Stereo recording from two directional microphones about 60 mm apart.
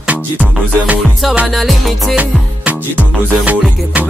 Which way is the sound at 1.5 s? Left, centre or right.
Centre.